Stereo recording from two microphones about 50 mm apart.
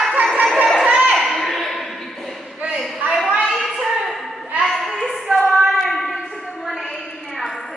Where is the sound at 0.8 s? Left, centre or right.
Right.